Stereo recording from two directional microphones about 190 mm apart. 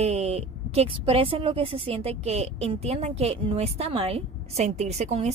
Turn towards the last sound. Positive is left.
turn(degrees=-35)  # may be behind; listen again after turning